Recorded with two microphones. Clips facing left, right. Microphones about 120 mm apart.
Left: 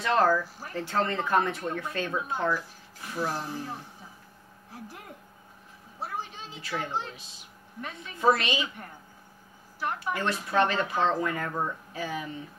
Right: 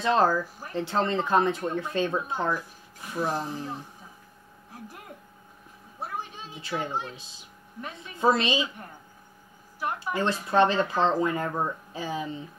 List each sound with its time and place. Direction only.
0.0 s speech: 20° right (ahead or behind)
6.6 s speech: 20° right (ahead or behind)
9.8 s a woman's voice: 15° right (ahead or behind)
10.1 s speech: 25° right (ahead or behind)